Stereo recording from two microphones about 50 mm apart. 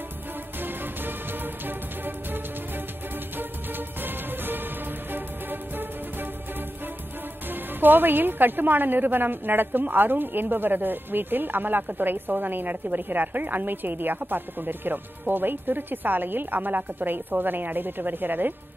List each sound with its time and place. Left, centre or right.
0.6 s music: right
7.8 s a woman's voice: right